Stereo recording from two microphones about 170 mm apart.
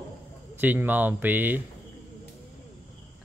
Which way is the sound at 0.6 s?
10° right (ahead or behind).